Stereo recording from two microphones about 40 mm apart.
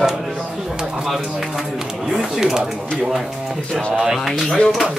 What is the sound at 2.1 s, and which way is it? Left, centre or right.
Pigeon, centre.